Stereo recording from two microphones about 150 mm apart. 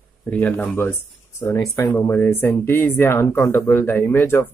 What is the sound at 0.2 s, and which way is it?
Speech, 10° left (ahead or behind).